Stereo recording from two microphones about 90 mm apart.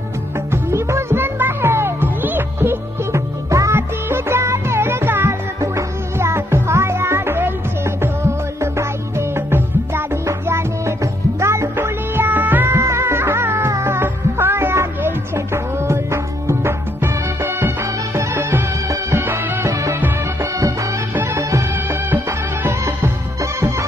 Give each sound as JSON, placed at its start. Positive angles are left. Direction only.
{"t": 0.5, "sound": "music", "side_deg": -30}
{"t": 3.4, "sound": "music", "side_deg": -35}
{"t": 3.7, "sound": "music", "side_deg": -25}
{"t": 19.7, "sound": "music", "side_deg": -40}
{"t": 21.4, "sound": "music", "side_deg": -35}
{"t": 22.1, "sound": "music", "side_deg": -20}